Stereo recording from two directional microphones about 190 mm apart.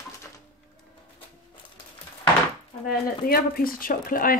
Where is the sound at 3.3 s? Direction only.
50° left (ahead or behind).